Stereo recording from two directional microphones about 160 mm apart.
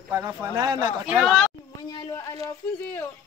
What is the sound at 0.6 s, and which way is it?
Speech, 25° right (ahead or behind).